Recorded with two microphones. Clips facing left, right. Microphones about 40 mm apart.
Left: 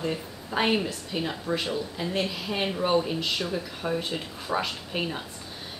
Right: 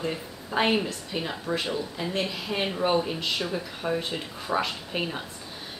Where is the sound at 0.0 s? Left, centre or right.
Centre.